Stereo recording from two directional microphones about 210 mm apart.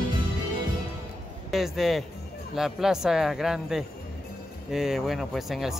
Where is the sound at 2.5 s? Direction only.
Centre (ahead or behind).